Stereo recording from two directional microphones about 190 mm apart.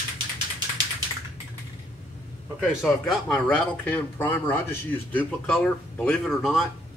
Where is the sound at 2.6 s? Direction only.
Centre (ahead or behind).